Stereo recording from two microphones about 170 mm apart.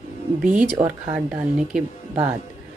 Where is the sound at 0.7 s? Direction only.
15° right (ahead or behind).